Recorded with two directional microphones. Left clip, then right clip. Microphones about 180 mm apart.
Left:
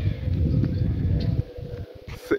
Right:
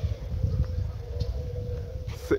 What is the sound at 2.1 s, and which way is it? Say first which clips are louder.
Hiccup: left 2 dB; 5° right (ahead or behind).